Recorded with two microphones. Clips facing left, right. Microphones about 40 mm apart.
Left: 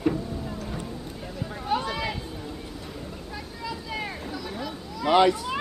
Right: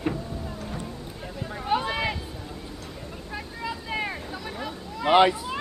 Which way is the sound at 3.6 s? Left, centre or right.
Right.